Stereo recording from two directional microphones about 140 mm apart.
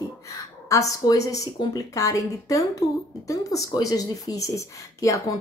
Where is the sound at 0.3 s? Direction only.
25° left (ahead or behind).